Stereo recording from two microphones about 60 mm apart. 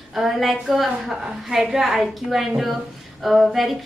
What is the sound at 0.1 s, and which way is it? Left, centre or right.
A woman's voice, centre.